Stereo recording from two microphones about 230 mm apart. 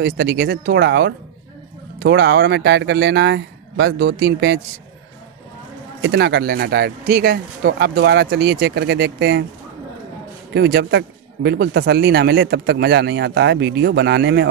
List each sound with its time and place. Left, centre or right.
0.0 s speech: right
6.0 s speech: right
10.5 s speech: right